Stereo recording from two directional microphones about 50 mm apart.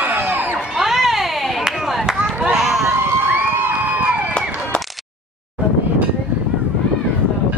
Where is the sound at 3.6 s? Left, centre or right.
Right.